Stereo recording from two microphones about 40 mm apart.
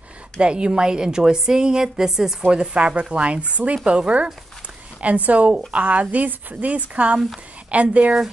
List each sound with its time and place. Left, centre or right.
0.4 s a woman's voice: right